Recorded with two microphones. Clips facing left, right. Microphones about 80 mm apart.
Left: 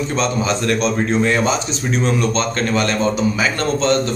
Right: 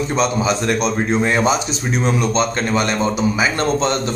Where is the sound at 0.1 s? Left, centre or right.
Centre.